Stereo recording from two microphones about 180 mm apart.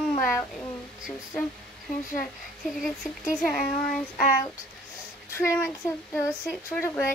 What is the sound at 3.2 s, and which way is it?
Speech, 5° left (ahead or behind).